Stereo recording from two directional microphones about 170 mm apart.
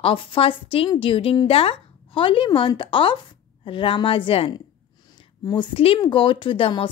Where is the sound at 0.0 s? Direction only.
30° left (ahead or behind).